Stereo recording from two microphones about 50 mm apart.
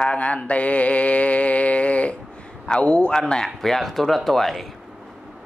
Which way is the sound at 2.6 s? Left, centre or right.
Centre.